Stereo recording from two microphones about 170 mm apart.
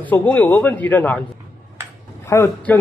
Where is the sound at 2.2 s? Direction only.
15° left (ahead or behind).